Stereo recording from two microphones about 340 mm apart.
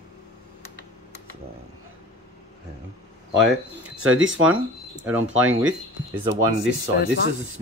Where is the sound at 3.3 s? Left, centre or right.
Right.